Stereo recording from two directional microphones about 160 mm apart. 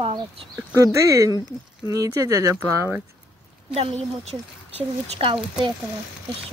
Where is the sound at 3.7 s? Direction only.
40° right (ahead or behind).